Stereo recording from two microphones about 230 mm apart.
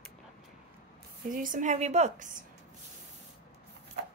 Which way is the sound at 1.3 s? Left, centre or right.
Right.